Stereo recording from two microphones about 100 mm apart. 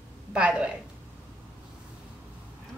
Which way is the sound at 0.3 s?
10° right (ahead or behind).